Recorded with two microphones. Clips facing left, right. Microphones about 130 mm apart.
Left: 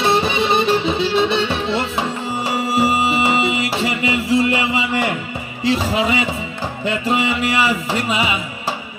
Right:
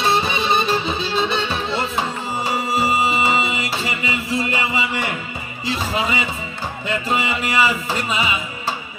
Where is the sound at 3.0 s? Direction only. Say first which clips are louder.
Left 2 dB; 70° left (ahead or behind).